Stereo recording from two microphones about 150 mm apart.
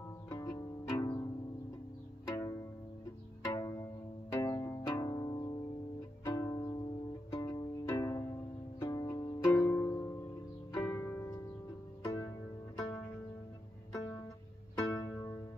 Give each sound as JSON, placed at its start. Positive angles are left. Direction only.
{"t": 0.3, "sound": "pizzicato", "side_deg": 25}
{"t": 2.2, "sound": "music", "side_deg": 20}
{"t": 4.4, "sound": "pizzicato", "side_deg": 20}
{"t": 6.2, "sound": "music", "side_deg": 25}
{"t": 9.5, "sound": "harp", "side_deg": 15}
{"t": 12.0, "sound": "music", "side_deg": 25}
{"t": 14.8, "sound": "music", "side_deg": 25}